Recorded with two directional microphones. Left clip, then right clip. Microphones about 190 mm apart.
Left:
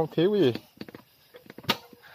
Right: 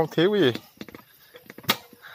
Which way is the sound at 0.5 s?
40° right (ahead or behind).